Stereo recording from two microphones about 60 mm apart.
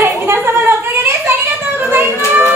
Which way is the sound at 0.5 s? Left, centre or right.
Right.